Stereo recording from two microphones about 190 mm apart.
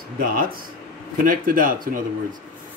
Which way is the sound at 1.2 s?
45° right (ahead or behind).